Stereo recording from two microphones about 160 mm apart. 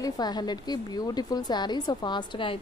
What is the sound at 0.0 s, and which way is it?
A woman's voice, 25° left (ahead or behind).